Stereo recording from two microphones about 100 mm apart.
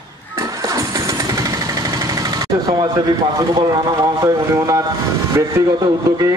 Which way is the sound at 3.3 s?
40° right (ahead or behind).